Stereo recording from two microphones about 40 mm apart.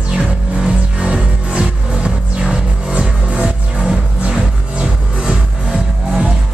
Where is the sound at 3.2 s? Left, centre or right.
Right.